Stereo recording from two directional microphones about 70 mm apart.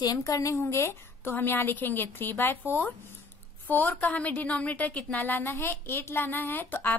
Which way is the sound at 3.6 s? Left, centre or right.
Left.